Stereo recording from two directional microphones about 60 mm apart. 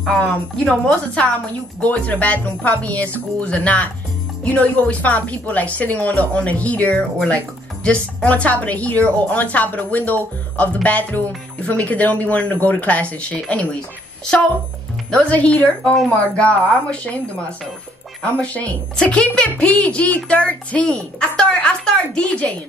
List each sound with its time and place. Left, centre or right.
0.0 s speech: centre
15.0 s speech: left
18.2 s speech: left